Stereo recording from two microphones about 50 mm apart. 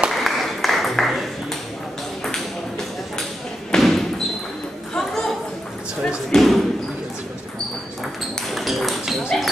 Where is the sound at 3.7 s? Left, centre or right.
Centre.